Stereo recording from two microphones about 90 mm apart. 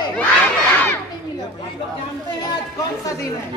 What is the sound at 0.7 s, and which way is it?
Crowd, 25° left (ahead or behind).